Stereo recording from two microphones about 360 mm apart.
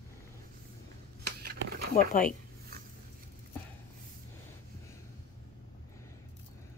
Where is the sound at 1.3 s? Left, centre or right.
Right.